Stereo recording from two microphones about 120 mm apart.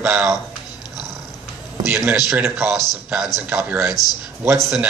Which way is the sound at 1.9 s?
20° right (ahead or behind).